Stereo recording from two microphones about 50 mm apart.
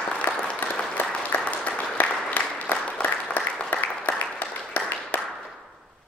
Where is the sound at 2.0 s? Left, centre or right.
Left.